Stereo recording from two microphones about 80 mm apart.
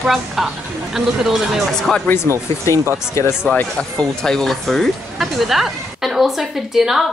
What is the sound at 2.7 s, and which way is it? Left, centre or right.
Speech, left.